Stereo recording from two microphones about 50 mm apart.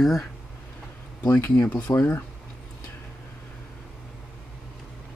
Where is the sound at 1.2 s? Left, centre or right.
Left.